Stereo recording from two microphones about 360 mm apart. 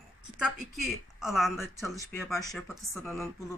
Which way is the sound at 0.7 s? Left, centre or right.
Centre.